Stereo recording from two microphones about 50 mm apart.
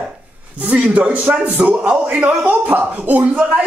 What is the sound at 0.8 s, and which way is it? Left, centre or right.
Speech, centre.